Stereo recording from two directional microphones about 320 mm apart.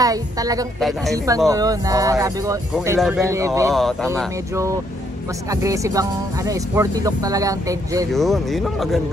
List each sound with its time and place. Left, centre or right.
0.0 s speech: centre
0.7 s speech: centre
1.1 s speech: centre
3.7 s speech: centre
5.5 s speech: centre
8.1 s speech: centre